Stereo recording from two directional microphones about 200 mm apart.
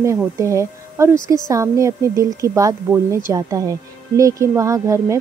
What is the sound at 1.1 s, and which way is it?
Speech, 20° left (ahead or behind).